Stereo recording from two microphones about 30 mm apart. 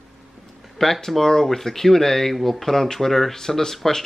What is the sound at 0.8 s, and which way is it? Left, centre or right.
Speech, centre.